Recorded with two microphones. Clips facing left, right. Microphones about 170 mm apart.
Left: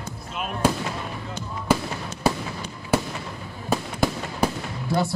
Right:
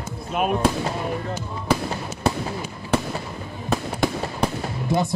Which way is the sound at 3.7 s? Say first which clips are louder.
Right 1 dB; 5° left (ahead or behind).